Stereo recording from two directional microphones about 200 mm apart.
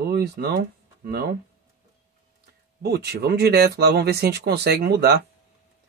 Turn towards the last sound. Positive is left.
turn(degrees=-55)  # may be behind; listen again after turning